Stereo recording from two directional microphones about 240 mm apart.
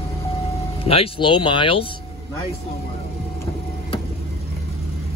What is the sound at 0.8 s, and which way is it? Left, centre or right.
Speech, left.